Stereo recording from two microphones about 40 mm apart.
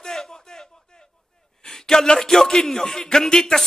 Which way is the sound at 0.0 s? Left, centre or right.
Centre.